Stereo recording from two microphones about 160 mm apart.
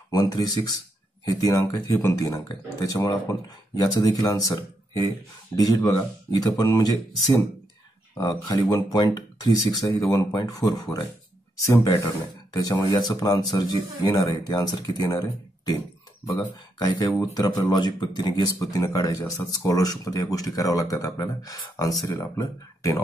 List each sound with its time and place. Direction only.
0.1 s speech: 25° left (ahead or behind)
5.6 s speech: 15° left (ahead or behind)